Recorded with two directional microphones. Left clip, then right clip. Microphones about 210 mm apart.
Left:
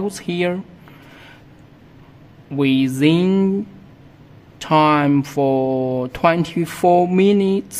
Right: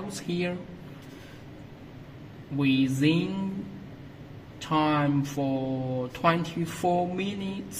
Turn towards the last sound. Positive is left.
turn(degrees=50)  # may be behind; listen again after turning